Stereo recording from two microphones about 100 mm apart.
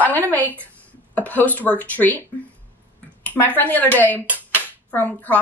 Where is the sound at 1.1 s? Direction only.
15° left (ahead or behind).